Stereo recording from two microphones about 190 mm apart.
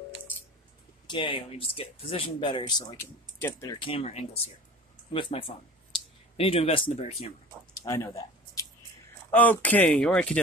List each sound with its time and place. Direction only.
1.0 s speech: 25° left (ahead or behind)
3.8 s speech: 30° left (ahead or behind)
7.8 s a sound: 15° left (ahead or behind)
9.3 s speech: 10° left (ahead or behind)